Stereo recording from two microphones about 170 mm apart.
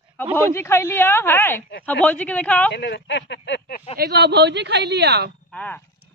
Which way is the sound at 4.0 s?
70° right (ahead or behind).